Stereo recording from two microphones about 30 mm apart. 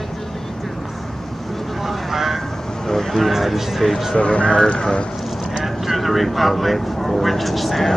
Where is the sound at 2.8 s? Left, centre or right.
Centre.